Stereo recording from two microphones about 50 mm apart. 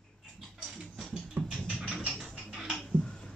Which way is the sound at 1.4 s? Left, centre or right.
Centre.